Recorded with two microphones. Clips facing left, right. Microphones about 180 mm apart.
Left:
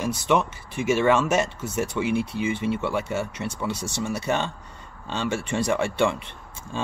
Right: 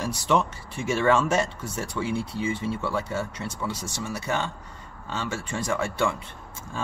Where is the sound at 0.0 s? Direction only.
15° left (ahead or behind).